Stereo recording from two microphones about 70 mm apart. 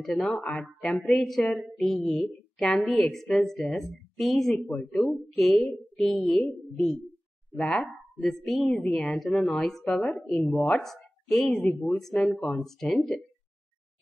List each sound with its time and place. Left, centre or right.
0.0 s a woman's voice: centre
10.2 s a woman's voice: centre